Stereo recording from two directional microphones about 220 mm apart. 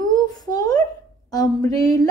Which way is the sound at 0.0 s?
20° left (ahead or behind).